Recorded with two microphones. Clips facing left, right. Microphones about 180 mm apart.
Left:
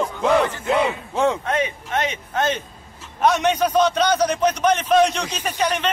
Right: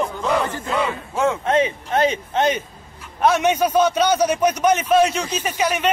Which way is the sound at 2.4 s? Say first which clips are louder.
Right 2 dB; 15° right (ahead or behind).